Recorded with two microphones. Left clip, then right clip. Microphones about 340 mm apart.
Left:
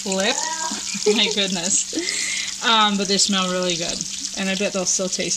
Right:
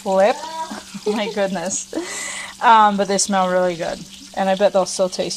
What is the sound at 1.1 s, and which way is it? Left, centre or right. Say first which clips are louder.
Frying: even; centre.